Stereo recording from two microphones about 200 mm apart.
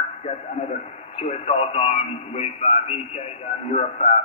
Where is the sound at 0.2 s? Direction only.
35° left (ahead or behind).